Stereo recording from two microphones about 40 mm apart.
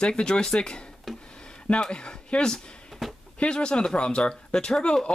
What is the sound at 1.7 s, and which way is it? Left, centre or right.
Speech, left.